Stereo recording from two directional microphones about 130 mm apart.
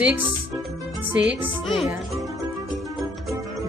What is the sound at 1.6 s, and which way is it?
Music, centre (ahead or behind).